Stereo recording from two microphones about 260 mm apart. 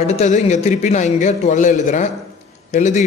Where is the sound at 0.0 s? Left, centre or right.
Left.